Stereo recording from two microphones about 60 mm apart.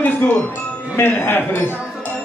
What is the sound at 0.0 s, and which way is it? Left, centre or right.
Music, left.